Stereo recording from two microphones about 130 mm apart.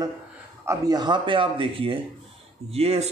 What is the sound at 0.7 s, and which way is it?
A man's voice, 30° right (ahead or behind).